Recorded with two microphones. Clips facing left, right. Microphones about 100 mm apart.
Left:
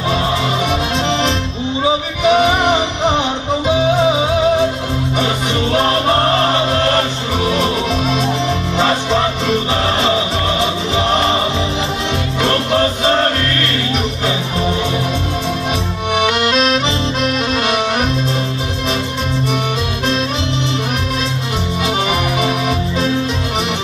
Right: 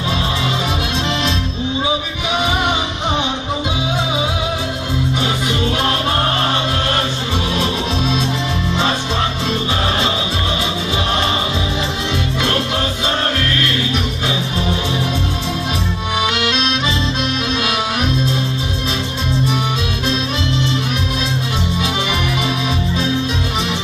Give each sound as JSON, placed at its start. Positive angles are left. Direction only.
{"t": 2.2, "sound": "music", "side_deg": 55}
{"t": 5.2, "sound": "music", "side_deg": 40}
{"t": 7.0, "sound": "music", "side_deg": 40}
{"t": 16.2, "sound": "music", "side_deg": 50}
{"t": 21.8, "sound": "music", "side_deg": 45}